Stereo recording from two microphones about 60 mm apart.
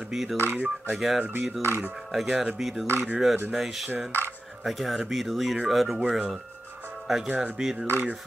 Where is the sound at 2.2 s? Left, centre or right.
Centre.